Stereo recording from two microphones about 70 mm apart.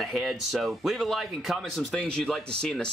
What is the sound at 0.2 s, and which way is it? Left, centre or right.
Speech, centre.